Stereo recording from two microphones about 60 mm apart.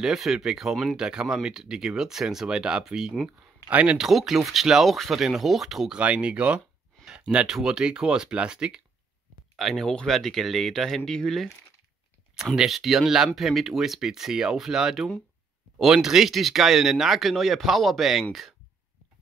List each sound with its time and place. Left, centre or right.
0.0 s speech: centre
3.6 s speech: right
4.0 s speech: centre
5.9 s speech: centre
7.1 s a sound: centre
7.4 s speech: centre
9.6 s speech: centre
12.5 s speech: centre